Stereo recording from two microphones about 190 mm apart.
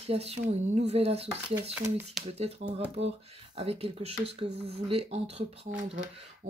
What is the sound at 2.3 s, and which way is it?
Speech, 35° right (ahead or behind).